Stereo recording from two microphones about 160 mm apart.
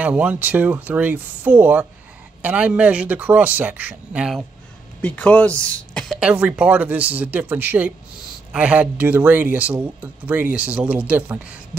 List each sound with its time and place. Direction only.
0.0 s speech: 10° right (ahead or behind)
5.0 s speech: 10° left (ahead or behind); by 11.5 s 10° right (ahead or behind)